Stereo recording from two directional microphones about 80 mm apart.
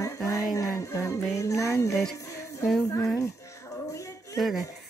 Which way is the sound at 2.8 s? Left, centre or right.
Left.